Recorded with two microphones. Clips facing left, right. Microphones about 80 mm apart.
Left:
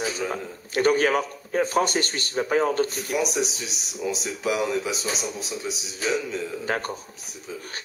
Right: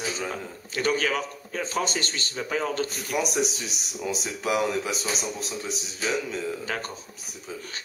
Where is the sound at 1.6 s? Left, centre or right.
Left.